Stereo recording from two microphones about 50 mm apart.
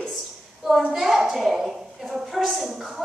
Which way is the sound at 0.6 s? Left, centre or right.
Centre.